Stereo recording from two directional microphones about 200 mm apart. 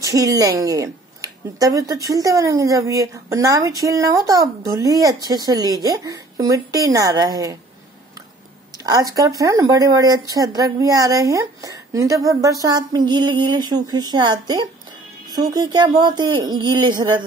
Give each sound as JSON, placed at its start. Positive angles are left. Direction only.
{"t": 0.0, "sound": "speech", "side_deg": -15}
{"t": 8.7, "sound": "speech", "side_deg": -20}